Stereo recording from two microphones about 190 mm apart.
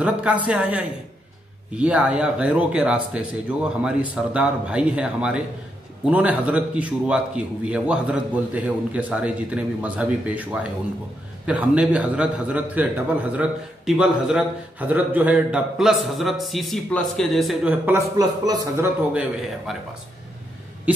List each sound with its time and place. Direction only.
0.0 s a man's voice: 5° right (ahead or behind)
18.1 s speech: 20° right (ahead or behind)
19.1 s a man's voice: centre (ahead or behind)